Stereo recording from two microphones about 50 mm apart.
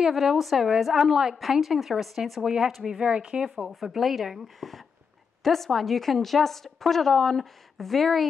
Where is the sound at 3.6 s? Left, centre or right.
Centre.